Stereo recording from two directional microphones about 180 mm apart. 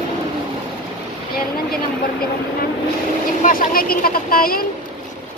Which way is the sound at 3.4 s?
50° left (ahead or behind).